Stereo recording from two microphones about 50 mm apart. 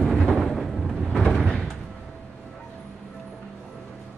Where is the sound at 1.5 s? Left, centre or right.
Centre.